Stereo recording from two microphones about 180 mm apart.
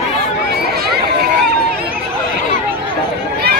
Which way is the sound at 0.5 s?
60° right (ahead or behind).